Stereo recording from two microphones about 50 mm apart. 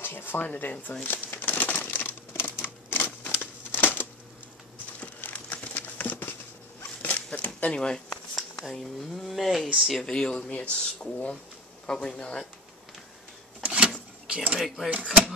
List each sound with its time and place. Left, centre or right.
0.0 s speech: left
1.0 s crumpling: left
7.0 s a sound: left
8.4 s speech: centre
10.0 s speech: centre
10.5 s speech: left
13.6 s a sound: right
14.2 s speech: centre